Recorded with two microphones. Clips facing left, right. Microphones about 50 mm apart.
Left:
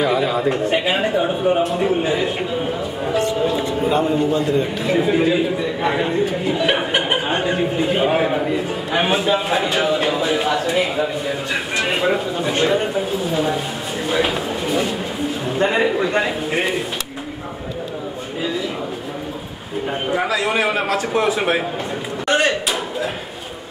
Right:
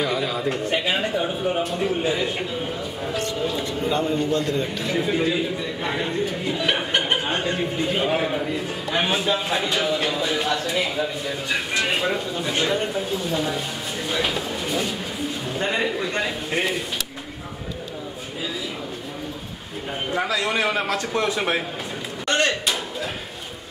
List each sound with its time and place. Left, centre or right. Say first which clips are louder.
0.0 s a man's voice: left 6 dB; centre
20.1 s a man's voice: left 3 dB; centre
22.3 s a sound: left 4 dB; centre